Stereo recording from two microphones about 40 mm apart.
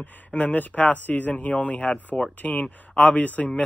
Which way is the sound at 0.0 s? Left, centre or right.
Left.